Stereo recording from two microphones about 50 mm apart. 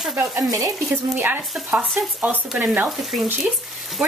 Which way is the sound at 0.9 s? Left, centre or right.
Right.